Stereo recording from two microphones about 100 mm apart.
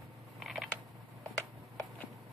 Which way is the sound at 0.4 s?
Centre (ahead or behind).